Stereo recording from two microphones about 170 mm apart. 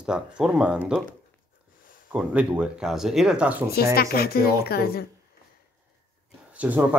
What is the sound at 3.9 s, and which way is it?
A woman's voice, 65° left (ahead or behind).